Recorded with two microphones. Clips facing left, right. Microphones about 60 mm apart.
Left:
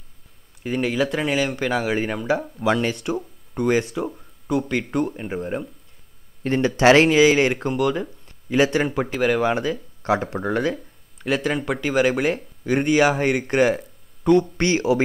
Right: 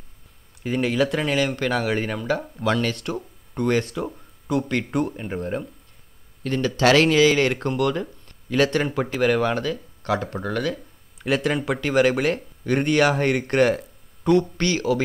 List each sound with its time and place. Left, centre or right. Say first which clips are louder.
0.6 s speech: even; centre
6.4 s speech: left 3 dB; left
7.1 s speech: left 2 dB; centre
9.5 s speech: left 2 dB; centre
11.1 s speech: even; centre
14.6 s speech: left 3 dB; left